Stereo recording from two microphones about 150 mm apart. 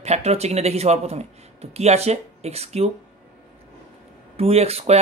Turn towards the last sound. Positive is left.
turn(degrees=-45)  # may be behind; listen again after turning